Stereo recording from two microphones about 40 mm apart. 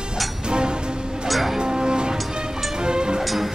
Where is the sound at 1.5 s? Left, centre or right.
Right.